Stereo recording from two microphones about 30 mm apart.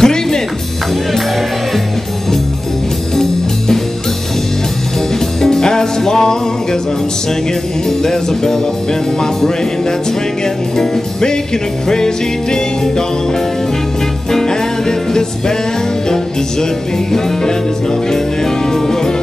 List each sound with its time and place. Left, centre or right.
0.0 s music: left
3.2 s music: centre
5.4 s music: centre
8.0 s music: centre
17.1 s music: left
18.7 s music: centre